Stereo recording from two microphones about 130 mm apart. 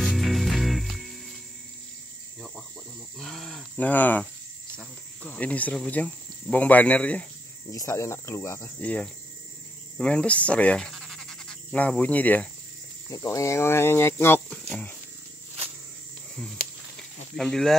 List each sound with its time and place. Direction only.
0.0 s music: centre (ahead or behind)
3.2 s a sound: centre (ahead or behind)
3.7 s speech: 15° left (ahead or behind)
7.7 s speech: 25° left (ahead or behind)
13.1 s speech: 25° left (ahead or behind)
16.9 s a sound: 5° left (ahead or behind)